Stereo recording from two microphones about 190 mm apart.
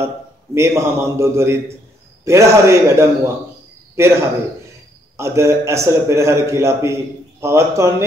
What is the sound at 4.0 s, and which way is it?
A man's voice, 15° right (ahead or behind).